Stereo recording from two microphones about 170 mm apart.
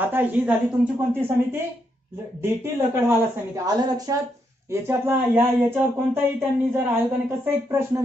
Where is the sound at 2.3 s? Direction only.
15° right (ahead or behind).